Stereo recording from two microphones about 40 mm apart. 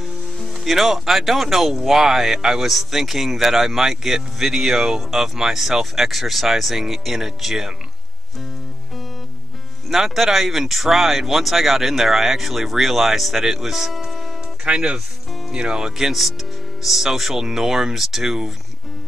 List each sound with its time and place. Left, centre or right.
0.4 s speech: centre
9.8 s speech: centre
14.6 s speech: right